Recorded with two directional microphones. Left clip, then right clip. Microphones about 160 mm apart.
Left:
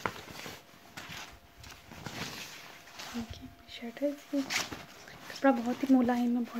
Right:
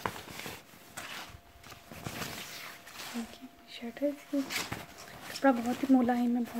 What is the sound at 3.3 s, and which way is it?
Whispering, 5° left (ahead or behind).